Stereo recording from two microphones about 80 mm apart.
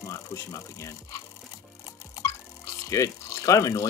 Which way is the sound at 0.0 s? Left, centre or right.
Left.